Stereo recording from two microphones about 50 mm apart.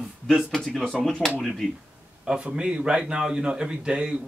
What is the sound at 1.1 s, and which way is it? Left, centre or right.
Speech, centre.